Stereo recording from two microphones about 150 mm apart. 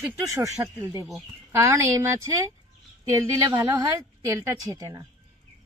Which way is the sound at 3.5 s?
25° right (ahead or behind).